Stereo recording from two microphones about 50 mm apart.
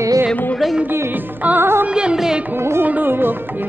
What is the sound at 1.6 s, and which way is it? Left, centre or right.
Music, right.